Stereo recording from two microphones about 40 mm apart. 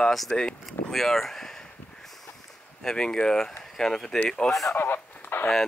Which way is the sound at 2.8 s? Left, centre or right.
Centre.